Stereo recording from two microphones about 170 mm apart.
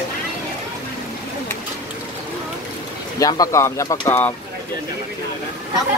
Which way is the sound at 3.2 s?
20° left (ahead or behind).